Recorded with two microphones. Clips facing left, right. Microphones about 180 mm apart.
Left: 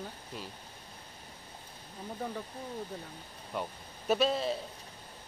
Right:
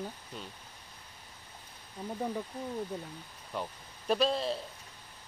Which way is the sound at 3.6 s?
Centre (ahead or behind).